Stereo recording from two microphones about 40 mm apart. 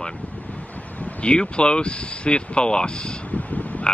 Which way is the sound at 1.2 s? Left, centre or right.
Left.